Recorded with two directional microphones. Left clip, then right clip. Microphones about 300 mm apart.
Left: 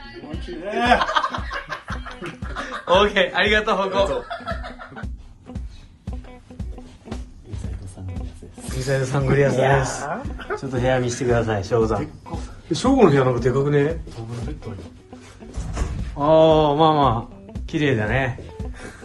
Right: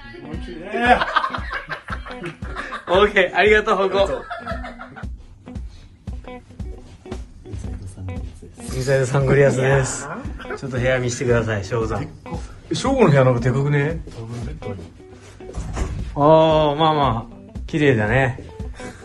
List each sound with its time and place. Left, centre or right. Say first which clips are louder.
0.3 s music: even; centre
6.0 s music: right 4 dB; centre
8.6 s a man's voice: right 4 dB; centre
14.3 s music: right 2 dB; centre
15.9 s speech: right 3 dB; centre
17.5 s music: right 4 dB; centre